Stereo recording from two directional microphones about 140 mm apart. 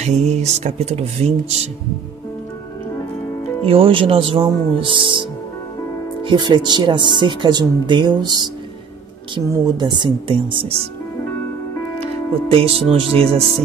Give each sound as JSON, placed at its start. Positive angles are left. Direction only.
{"t": 0.0, "sound": "speech", "side_deg": -50}
{"t": 3.6, "sound": "speech", "side_deg": -40}
{"t": 6.2, "sound": "speech", "side_deg": -35}
{"t": 9.5, "sound": "speech", "side_deg": -30}
{"t": 12.4, "sound": "speech", "side_deg": -45}